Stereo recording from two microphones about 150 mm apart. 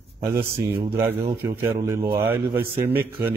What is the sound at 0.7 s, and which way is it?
Speech, 15° right (ahead or behind).